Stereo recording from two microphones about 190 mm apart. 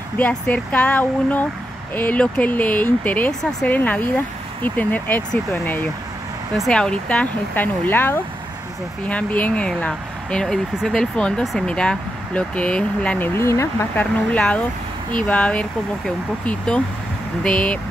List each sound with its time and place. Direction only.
0.2 s speech: 5° left (ahead or behind)